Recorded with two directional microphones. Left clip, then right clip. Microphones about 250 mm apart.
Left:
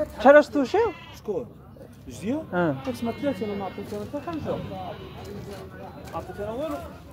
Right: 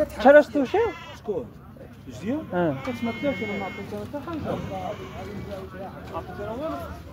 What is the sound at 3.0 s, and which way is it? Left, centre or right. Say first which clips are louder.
Speech: right 1 dB; left.